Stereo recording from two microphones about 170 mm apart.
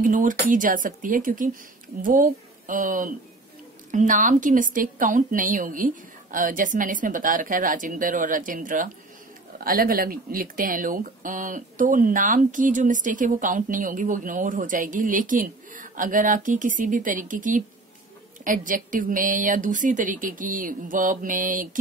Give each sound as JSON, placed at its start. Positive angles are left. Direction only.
{"t": 0.0, "sound": "speech", "side_deg": -50}